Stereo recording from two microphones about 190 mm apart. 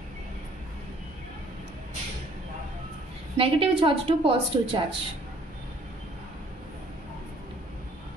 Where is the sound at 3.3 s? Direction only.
30° right (ahead or behind).